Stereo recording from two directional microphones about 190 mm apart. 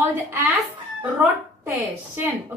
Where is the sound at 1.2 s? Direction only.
10° right (ahead or behind).